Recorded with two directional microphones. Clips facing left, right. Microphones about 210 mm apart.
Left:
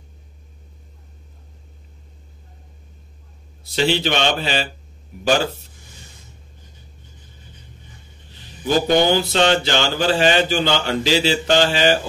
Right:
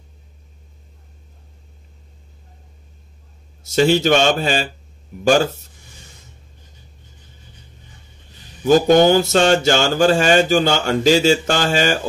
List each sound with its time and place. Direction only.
3.6 s mantra: 45° right (ahead or behind)
8.6 s mantra: 45° right (ahead or behind)